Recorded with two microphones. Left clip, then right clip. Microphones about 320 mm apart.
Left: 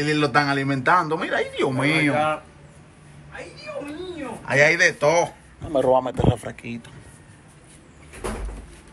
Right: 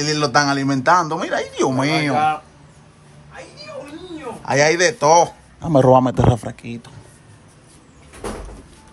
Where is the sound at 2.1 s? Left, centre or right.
Right.